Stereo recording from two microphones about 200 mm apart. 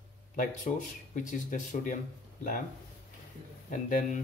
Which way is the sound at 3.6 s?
40° left (ahead or behind).